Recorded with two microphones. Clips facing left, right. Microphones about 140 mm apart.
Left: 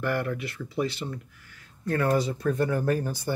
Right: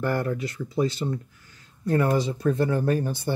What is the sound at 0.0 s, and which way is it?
Speech, 30° right (ahead or behind).